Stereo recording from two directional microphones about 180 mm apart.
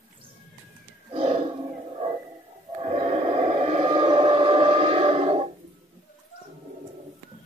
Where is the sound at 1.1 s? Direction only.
35° right (ahead or behind).